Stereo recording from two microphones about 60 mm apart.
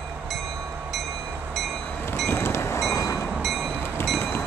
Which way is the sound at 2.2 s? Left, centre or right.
Left.